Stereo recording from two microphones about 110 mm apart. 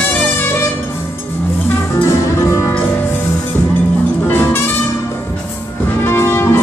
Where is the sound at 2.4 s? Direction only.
25° left (ahead or behind).